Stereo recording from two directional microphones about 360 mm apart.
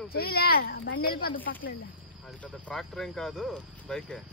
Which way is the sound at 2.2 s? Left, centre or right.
Centre.